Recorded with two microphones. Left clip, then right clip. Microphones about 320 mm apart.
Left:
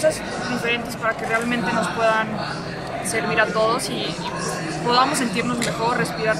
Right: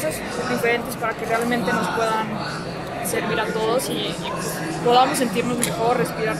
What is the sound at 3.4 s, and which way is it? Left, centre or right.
Speech, centre.